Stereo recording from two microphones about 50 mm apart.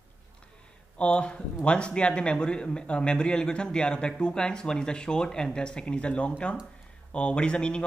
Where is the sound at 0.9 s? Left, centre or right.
Left.